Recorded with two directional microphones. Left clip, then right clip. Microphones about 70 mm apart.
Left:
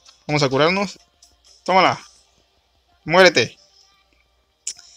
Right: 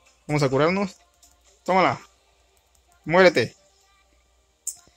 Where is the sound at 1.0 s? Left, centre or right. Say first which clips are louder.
Left 4 dB; right.